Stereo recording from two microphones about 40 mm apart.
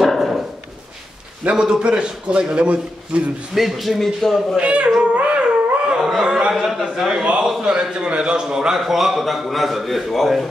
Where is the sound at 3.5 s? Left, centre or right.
Centre.